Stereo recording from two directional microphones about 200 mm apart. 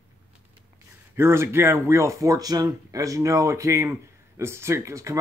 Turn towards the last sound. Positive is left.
turn(degrees=-15)  # may be behind; listen again after turning